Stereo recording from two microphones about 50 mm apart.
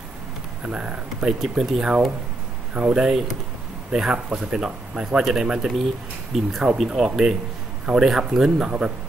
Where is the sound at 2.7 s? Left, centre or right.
Centre.